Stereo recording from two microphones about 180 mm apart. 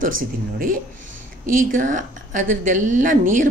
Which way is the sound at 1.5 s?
50° right (ahead or behind).